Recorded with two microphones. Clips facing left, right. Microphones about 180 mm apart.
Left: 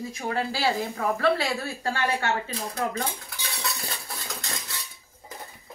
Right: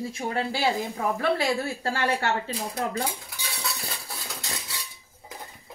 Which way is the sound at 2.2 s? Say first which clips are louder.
Right 1 dB; 30° right (ahead or behind).